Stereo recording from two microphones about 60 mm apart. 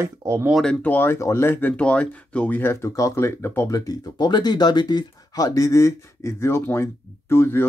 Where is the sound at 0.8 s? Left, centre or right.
Left.